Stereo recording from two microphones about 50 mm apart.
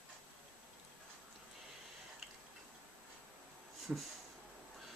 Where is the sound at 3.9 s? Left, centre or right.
Centre.